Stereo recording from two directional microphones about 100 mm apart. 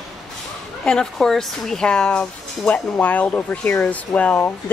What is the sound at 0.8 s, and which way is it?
Speech, 10° left (ahead or behind).